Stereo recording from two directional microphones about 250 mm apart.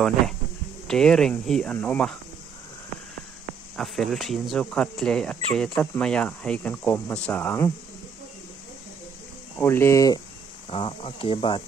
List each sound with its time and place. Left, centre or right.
0.8 s speech: centre
3.7 s speech: centre
9.6 s speech: centre